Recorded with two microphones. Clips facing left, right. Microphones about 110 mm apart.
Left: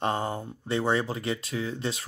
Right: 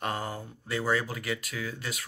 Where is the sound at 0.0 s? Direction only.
25° left (ahead or behind).